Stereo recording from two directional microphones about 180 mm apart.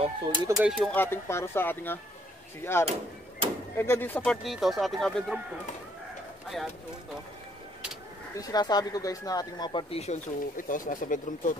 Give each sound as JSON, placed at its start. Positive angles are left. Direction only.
{"t": 0.0, "sound": "speech", "side_deg": -25}
{"t": 0.7, "sound": "speech", "side_deg": 0}
{"t": 0.9, "sound": "speech", "side_deg": 10}
{"t": 8.4, "sound": "speech", "side_deg": 20}